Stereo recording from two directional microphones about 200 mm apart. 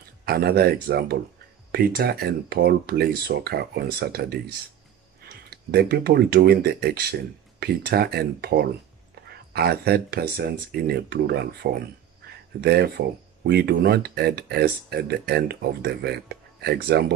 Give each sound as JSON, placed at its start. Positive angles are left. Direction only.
{"t": 0.2, "sound": "speech", "side_deg": -50}
{"t": 5.5, "sound": "speech", "side_deg": -50}